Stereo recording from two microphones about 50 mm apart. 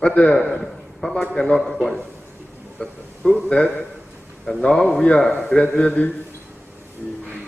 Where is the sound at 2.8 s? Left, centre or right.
Left.